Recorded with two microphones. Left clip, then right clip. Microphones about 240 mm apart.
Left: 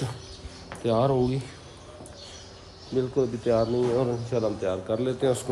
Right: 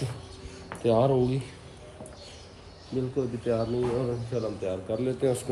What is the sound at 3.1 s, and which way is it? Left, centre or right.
Speech, centre.